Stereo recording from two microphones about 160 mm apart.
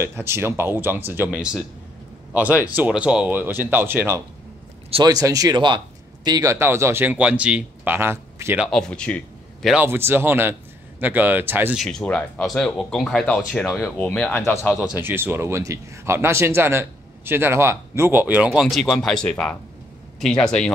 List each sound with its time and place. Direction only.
0.0 s speech: 15° right (ahead or behind)
8.6 s a man's voice: 5° left (ahead or behind)
9.8 s speech: 15° right (ahead or behind)
11.8 s speech: 5° left (ahead or behind)
13.9 s speech: 10° left (ahead or behind)
14.9 s speech: 15° right (ahead or behind); by 20.7 s 5° left (ahead or behind)